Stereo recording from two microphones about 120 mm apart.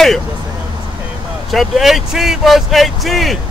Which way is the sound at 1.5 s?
Centre (ahead or behind).